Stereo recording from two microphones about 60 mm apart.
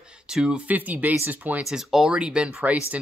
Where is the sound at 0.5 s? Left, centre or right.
Right.